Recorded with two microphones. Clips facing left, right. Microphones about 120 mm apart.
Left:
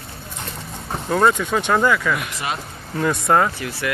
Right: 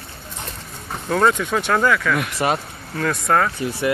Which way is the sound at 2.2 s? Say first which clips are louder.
Right 6 dB; 45° right (ahead or behind).